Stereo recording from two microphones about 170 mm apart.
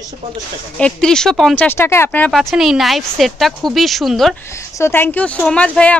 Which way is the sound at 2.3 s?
Centre (ahead or behind).